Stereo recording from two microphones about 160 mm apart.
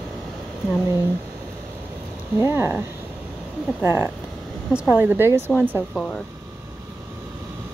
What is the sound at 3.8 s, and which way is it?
Speech, 15° right (ahead or behind).